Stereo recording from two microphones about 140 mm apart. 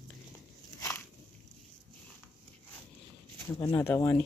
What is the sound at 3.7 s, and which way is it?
Speech, 15° left (ahead or behind).